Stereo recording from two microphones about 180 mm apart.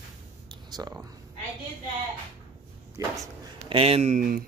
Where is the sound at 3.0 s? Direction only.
20° right (ahead or behind).